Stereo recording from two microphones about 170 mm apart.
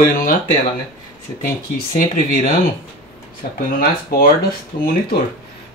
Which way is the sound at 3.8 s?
60° left (ahead or behind).